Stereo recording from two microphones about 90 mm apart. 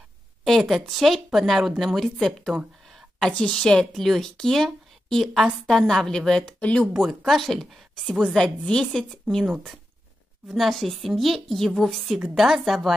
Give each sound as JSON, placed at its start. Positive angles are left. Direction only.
{"t": 0.4, "sound": "speech", "side_deg": 0}
{"t": 6.9, "sound": "a woman's voice", "side_deg": 0}
{"t": 10.5, "sound": "speech", "side_deg": 0}